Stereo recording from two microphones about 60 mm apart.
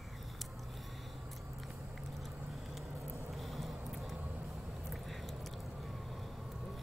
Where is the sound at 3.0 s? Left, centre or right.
Right.